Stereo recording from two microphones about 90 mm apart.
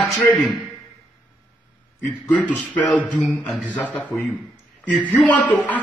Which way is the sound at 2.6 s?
15° left (ahead or behind).